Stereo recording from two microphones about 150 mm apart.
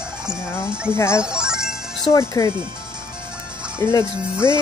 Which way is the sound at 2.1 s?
25° left (ahead or behind).